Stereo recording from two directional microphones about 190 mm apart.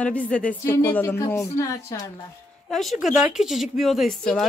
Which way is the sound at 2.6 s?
Centre (ahead or behind).